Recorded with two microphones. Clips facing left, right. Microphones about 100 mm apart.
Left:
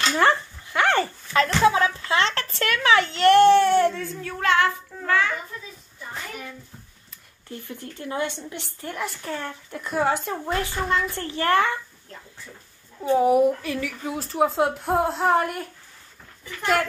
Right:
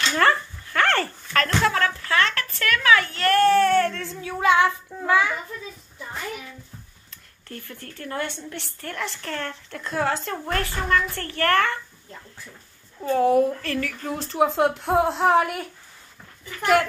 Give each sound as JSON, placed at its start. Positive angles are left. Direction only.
{"t": 0.1, "sound": "speech", "side_deg": 20}
{"t": 4.0, "sound": "speech", "side_deg": 0}
{"t": 4.3, "sound": "child singing", "side_deg": -10}
{"t": 7.4, "sound": "a woman's voice", "side_deg": 15}
{"t": 13.0, "sound": "speech", "side_deg": 15}